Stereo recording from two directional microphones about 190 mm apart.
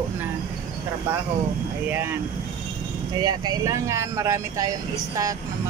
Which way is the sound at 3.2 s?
20° right (ahead or behind).